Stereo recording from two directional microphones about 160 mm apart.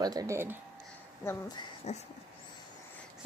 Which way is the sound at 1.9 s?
45° left (ahead or behind).